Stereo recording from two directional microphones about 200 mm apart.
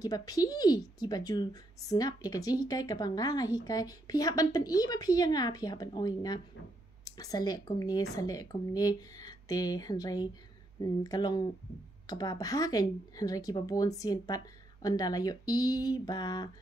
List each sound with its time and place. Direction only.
0.0 s a woman's voice: 20° left (ahead or behind)